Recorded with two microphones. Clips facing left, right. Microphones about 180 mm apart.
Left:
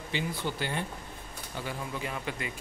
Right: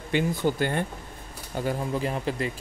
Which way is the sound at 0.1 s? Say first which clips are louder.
Right 9 dB; 45° right (ahead or behind).